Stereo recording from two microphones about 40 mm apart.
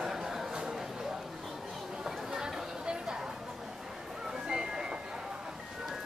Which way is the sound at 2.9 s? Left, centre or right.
Centre.